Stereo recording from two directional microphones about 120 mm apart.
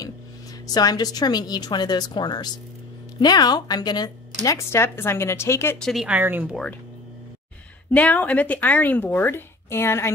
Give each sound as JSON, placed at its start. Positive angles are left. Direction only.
{"t": 0.7, "sound": "speech", "side_deg": 35}
{"t": 5.8, "sound": "speech", "side_deg": 0}
{"t": 6.0, "sound": "speech", "side_deg": -15}
{"t": 7.9, "sound": "speech", "side_deg": 15}